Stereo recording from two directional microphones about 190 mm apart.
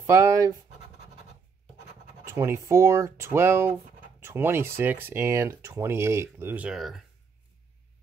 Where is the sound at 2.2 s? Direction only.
15° right (ahead or behind).